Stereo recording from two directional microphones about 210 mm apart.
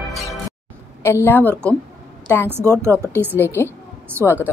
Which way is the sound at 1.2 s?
10° left (ahead or behind).